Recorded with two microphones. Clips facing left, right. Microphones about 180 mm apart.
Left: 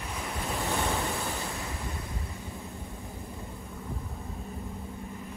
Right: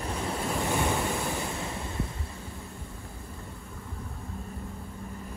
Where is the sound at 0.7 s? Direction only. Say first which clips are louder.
Right 2 dB; 15° right (ahead or behind).